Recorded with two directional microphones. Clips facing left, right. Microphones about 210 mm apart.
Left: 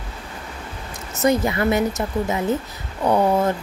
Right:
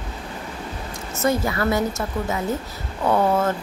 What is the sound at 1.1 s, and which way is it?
Speech, 20° left (ahead or behind).